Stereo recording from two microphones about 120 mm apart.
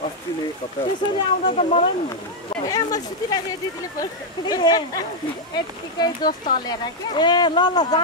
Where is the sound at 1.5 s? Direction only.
70° left (ahead or behind).